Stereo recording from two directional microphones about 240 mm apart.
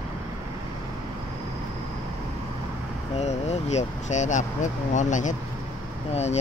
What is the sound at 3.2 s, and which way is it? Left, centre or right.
Speech, left.